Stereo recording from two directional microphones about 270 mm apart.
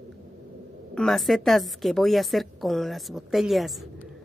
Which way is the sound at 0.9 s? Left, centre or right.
Centre.